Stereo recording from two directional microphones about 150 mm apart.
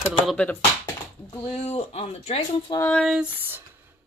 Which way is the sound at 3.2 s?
10° right (ahead or behind).